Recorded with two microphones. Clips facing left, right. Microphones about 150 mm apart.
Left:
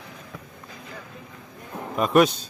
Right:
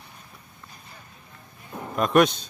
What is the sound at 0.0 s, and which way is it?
Vehicle, 90° left.